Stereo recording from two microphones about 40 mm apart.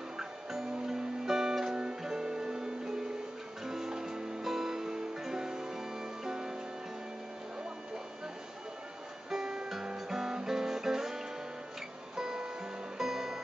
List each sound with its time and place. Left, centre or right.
0.2 s music: centre
9.3 s music: centre